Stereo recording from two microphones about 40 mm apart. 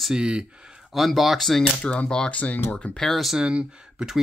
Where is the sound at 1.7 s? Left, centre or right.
Left.